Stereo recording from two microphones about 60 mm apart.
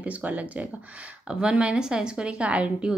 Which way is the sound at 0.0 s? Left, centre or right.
Right.